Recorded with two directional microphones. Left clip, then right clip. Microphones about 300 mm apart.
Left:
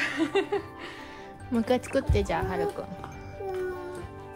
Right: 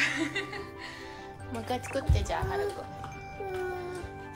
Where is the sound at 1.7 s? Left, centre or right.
Left.